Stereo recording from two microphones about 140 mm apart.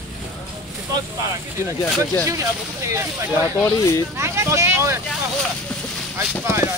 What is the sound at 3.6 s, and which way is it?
Speech, 25° left (ahead or behind).